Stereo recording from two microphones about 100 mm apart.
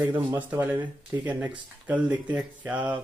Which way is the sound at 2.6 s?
15° right (ahead or behind).